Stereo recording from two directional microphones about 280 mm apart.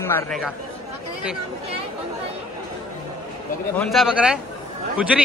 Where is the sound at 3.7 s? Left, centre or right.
Centre.